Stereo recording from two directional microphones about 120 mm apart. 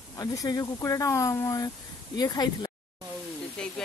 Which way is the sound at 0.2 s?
30° left (ahead or behind).